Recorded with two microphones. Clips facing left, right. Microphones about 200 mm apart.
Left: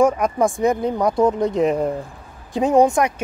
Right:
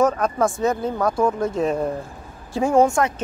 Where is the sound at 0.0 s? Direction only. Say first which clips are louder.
Left 2 dB; 15° left (ahead or behind).